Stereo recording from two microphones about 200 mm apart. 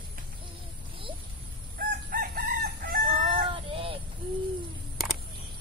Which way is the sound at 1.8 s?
45° right (ahead or behind).